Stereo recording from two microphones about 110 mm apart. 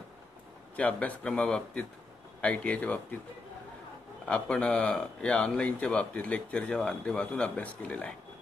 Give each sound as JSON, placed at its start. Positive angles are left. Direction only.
{"t": 0.7, "sound": "speech", "side_deg": 15}
{"t": 4.3, "sound": "speech", "side_deg": 10}